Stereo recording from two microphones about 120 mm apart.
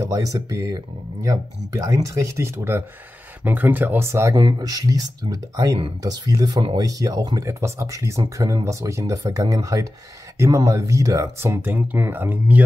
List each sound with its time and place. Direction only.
0.0 s speech: 30° right (ahead or behind)
4.4 s speech: 35° right (ahead or behind); by 12.6 s 15° right (ahead or behind)